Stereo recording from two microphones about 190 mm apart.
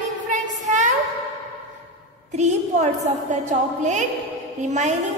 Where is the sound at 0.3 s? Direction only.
40° right (ahead or behind).